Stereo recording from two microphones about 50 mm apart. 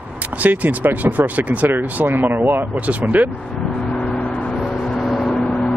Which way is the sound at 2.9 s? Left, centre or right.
Right.